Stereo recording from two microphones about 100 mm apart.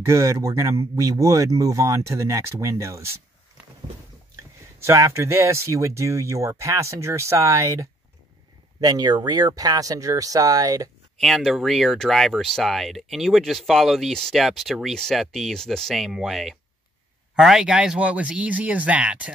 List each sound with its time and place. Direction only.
0.0 s speech: 30° right (ahead or behind)
4.8 s speech: 30° right (ahead or behind)
11.1 s speech: centre (ahead or behind)